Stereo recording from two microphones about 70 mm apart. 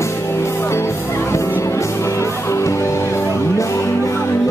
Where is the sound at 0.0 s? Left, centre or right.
Left.